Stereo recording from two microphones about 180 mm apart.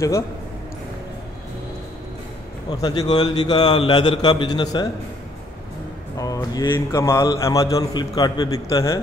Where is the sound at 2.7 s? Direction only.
20° left (ahead or behind).